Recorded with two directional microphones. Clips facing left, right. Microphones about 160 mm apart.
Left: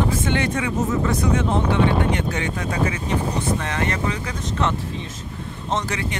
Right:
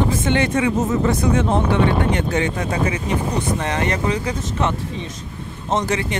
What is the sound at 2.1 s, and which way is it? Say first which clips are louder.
Speech: right 4 dB; 30° right (ahead or behind).